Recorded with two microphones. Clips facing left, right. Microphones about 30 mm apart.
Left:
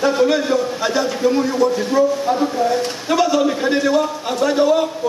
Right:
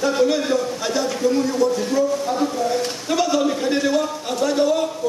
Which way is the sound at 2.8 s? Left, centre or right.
Centre.